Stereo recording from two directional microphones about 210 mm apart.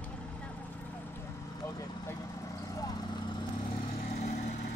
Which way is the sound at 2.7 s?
20° left (ahead or behind).